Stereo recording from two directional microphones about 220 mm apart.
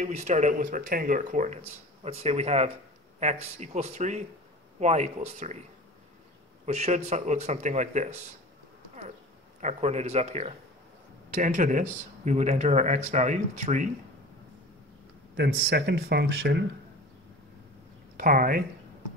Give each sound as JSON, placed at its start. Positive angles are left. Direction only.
{"t": 0.0, "sound": "speech", "side_deg": -30}
{"t": 6.6, "sound": "speech", "side_deg": -30}
{"t": 9.6, "sound": "speech", "side_deg": -30}
{"t": 15.3, "sound": "speech", "side_deg": -50}
{"t": 18.1, "sound": "speech", "side_deg": -40}